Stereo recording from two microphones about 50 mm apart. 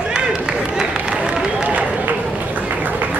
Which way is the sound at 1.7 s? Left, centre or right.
Right.